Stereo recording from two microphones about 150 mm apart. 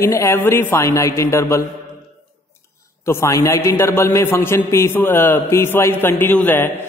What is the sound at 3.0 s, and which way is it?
A man's voice, 20° left (ahead or behind).